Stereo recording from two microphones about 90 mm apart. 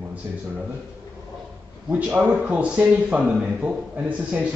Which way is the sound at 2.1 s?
15° right (ahead or behind).